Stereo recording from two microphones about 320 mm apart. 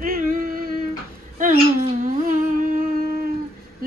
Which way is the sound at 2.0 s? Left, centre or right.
Right.